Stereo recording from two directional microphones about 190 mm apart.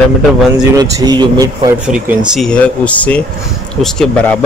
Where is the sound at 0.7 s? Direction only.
20° right (ahead or behind).